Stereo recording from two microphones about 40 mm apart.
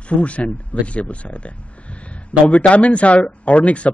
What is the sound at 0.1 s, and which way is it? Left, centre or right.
A man's voice, left.